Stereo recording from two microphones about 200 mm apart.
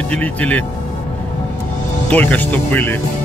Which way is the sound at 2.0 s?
10° left (ahead or behind).